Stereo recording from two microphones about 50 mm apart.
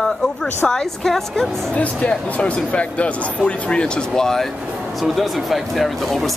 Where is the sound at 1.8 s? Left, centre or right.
Left; by 4.5 s centre.